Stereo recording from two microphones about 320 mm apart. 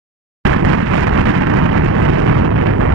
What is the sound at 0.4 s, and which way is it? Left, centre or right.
Vehicle, right.